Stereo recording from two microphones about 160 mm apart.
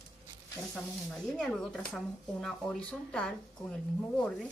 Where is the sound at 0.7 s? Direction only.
5° left (ahead or behind).